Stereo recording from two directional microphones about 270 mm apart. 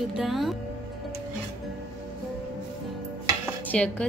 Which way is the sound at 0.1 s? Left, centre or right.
Centre.